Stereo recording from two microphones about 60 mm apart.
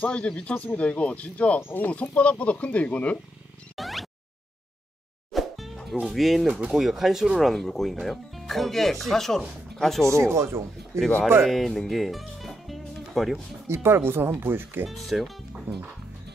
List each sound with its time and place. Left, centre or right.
0.0 s speech: centre
1.6 s speech: left
1.9 s speech: left
3.7 s a sound: centre
5.3 s music: centre
6.0 s speech: centre
10.1 s speech: right
11.4 s music: centre
13.7 s speech: right
14.9 s speech: centre